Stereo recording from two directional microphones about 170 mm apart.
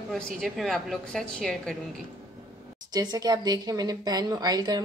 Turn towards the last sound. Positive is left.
turn(degrees=-25)  # may be behind; listen again after turning